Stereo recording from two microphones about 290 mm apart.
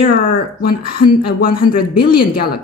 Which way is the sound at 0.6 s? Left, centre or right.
Left.